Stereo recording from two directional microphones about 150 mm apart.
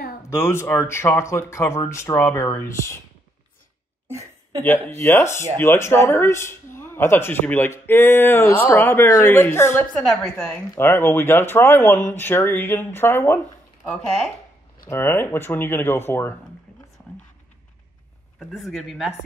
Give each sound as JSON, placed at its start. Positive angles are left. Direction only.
{"t": 0.3, "sound": "speech", "side_deg": 15}
{"t": 4.6, "sound": "speech", "side_deg": 15}
{"t": 10.0, "sound": "speech", "side_deg": 5}
{"t": 10.7, "sound": "speech", "side_deg": 15}
{"t": 13.8, "sound": "speech", "side_deg": 5}
{"t": 14.9, "sound": "speech", "side_deg": 15}
{"t": 18.4, "sound": "speech", "side_deg": 0}